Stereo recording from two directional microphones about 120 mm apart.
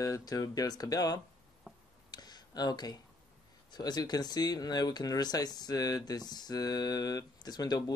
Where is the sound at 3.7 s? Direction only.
35° left (ahead or behind).